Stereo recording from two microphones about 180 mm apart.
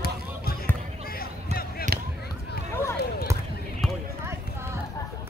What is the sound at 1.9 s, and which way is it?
Basketball bounce, 60° right (ahead or behind).